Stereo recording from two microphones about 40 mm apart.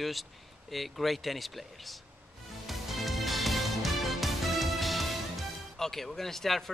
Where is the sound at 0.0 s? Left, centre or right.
Centre.